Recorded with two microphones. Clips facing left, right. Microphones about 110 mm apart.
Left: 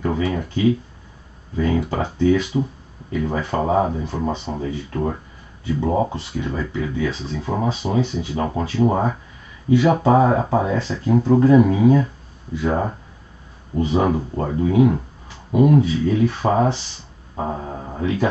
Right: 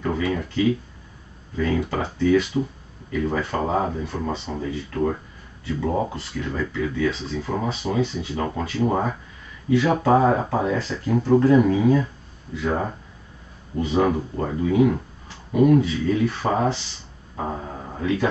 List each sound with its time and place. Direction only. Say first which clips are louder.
0.0 s a sound: left 3 dB; 20° left (ahead or behind)
1.6 s speech: left 2 dB; 20° left (ahead or behind)
5.8 s speech: left 4 dB; 20° left (ahead or behind)
13.7 s speech: left 2 dB; 25° left (ahead or behind)